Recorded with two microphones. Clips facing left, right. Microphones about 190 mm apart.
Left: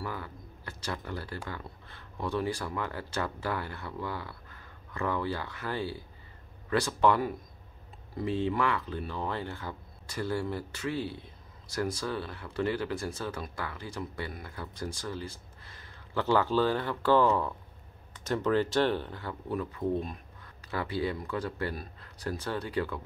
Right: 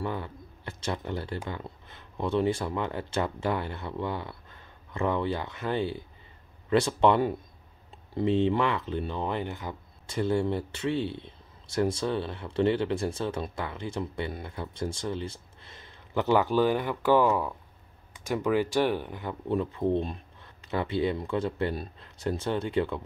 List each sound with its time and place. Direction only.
0.0 s speech: 25° right (ahead or behind)